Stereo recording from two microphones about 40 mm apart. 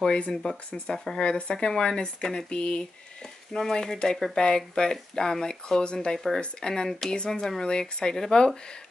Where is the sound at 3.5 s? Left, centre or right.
Centre.